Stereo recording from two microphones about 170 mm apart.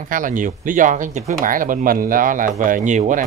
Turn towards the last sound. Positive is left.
turn(degrees=-45)  # may be behind; listen again after turning